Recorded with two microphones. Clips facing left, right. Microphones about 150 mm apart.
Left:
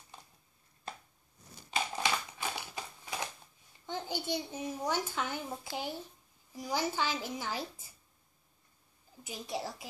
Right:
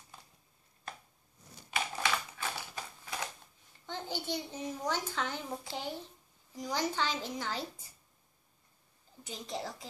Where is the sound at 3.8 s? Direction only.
15° left (ahead or behind).